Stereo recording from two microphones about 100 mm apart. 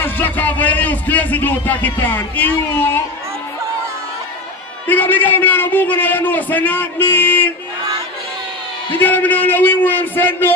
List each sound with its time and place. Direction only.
0.0 s a man's voice: 20° left (ahead or behind)
4.8 s a man's voice: 20° left (ahead or behind)
8.9 s a sound: 20° left (ahead or behind)